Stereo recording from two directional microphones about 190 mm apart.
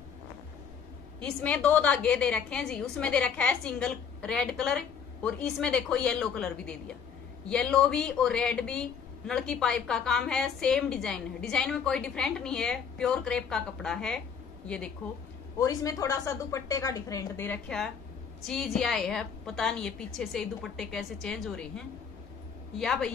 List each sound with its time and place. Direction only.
1.2 s a woman's voice: 5° left (ahead or behind)
15.6 s a woman's voice: 20° left (ahead or behind)